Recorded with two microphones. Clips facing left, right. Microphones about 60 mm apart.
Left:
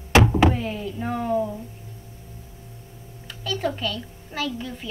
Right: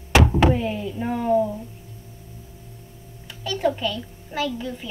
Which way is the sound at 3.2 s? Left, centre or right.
Centre.